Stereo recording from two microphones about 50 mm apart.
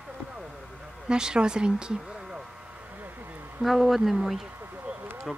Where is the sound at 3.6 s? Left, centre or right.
Centre.